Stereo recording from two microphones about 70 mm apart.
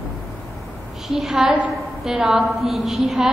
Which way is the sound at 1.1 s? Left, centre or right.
Centre.